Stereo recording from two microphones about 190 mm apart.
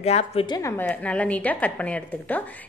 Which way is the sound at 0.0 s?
35° left (ahead or behind).